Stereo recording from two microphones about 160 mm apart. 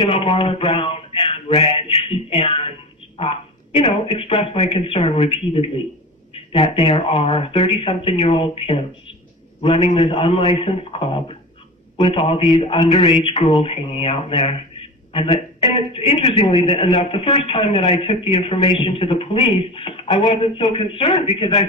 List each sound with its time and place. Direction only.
0.0 s a man's voice: 35° left (ahead or behind)